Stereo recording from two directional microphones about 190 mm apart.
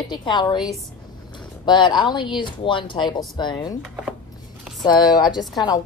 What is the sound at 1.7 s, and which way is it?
Speech, 25° left (ahead or behind).